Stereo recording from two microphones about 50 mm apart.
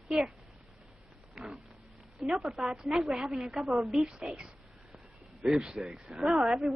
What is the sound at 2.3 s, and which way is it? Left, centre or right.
A woman's voice, centre.